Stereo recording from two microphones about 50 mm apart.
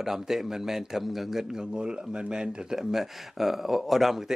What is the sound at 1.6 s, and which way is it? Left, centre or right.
Speech, centre.